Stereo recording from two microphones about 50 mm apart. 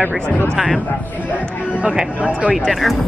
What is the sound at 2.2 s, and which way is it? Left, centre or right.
Speech, right.